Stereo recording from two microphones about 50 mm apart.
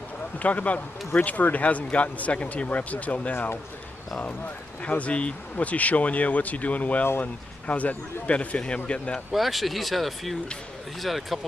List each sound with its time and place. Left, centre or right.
0.4 s speech: left
4.8 s speech: left
9.3 s speech: centre